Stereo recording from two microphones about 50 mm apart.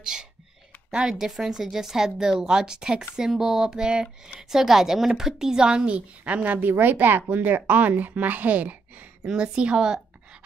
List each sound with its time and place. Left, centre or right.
0.0 s a sound: centre
0.9 s a woman's voice: centre; by 9.0 s right
9.2 s a woman's voice: centre